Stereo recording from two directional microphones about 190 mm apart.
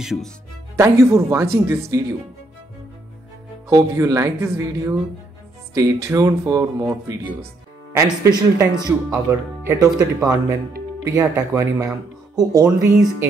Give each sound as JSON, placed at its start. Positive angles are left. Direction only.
{"t": 0.0, "sound": "speech", "side_deg": 0}
{"t": 0.7, "sound": "speech", "side_deg": -15}
{"t": 3.7, "sound": "speech", "side_deg": -15}